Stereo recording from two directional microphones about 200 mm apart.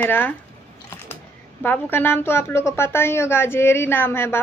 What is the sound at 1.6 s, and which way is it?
Speech, 10° left (ahead or behind).